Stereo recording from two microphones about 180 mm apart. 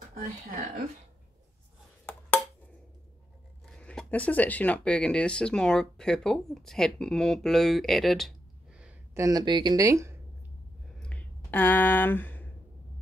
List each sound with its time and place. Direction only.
3.6 s speech: 5° left (ahead or behind)
9.2 s speech: 20° right (ahead or behind)
11.0 s a sound: 5° left (ahead or behind)